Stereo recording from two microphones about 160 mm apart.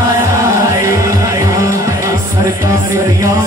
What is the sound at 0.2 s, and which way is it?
Music, 20° right (ahead or behind).